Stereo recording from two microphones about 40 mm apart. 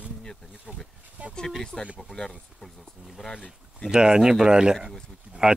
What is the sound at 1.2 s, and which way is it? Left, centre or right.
Speech, right.